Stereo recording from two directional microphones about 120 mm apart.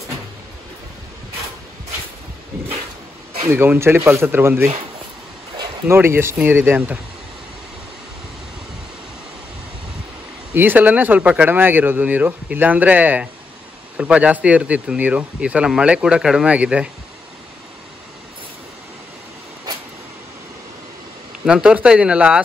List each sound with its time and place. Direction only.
3.4 s speech: 20° right (ahead or behind)
5.9 s speech: 20° right (ahead or behind)
10.5 s speech: 15° right (ahead or behind)
21.5 s speech: 10° right (ahead or behind)